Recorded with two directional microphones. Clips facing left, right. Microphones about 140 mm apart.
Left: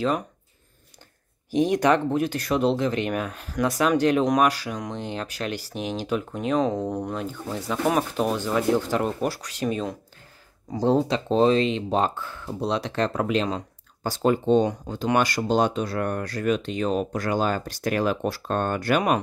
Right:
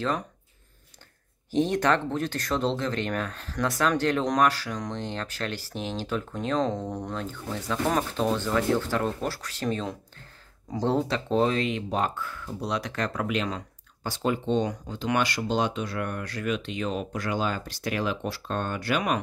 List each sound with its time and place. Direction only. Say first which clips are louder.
1.5 s speech: left 3 dB; 10° left (ahead or behind); by 13.7 s 30° left (ahead or behind)
14.0 s speech: left 6 dB; 40° left (ahead or behind)